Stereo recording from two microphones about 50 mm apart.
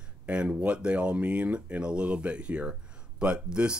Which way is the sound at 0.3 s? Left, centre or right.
Right.